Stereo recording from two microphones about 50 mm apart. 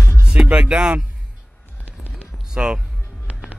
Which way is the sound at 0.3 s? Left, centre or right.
Right.